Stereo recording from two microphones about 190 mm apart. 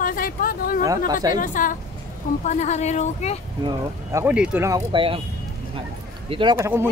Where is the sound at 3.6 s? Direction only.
20° right (ahead or behind).